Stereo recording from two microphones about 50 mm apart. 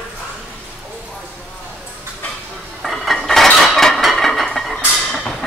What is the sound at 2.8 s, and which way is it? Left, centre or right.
Dishes, centre.